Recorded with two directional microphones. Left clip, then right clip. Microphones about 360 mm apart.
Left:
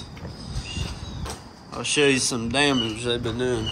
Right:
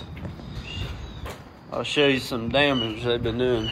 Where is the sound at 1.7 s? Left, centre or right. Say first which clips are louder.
Left 1 dB; centre.